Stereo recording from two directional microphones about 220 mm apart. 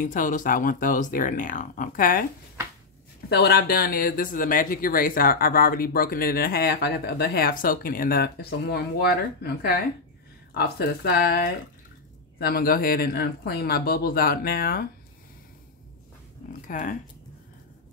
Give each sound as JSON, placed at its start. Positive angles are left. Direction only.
{"t": 0.0, "sound": "speech", "side_deg": 35}
{"t": 3.3, "sound": "speech", "side_deg": 45}
{"t": 12.4, "sound": "speech", "side_deg": 45}
{"t": 16.6, "sound": "speech", "side_deg": 35}